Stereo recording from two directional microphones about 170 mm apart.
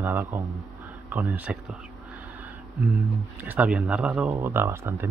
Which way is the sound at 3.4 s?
10° right (ahead or behind).